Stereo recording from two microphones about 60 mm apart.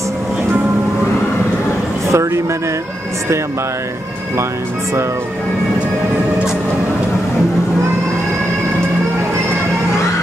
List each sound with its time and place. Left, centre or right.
2.0 s a man's voice: right